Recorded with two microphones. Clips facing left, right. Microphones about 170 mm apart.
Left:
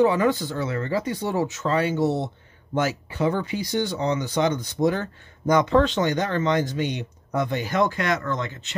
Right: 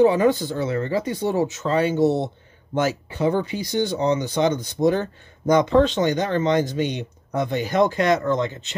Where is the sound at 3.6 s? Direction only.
20° right (ahead or behind).